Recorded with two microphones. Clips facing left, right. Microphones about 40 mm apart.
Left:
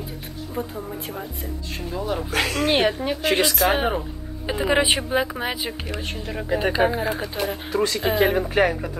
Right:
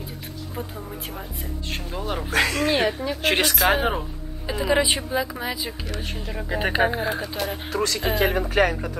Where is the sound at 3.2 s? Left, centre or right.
Right.